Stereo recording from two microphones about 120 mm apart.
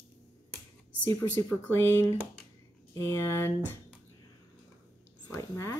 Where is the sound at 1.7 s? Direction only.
20° left (ahead or behind).